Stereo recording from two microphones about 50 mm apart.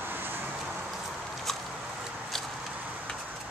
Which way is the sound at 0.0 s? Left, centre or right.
Right.